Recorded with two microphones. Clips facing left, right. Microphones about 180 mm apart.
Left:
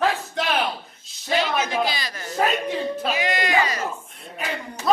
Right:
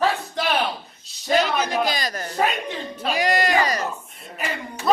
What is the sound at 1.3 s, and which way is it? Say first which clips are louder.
Speech: right 2 dB; 40° right (ahead or behind).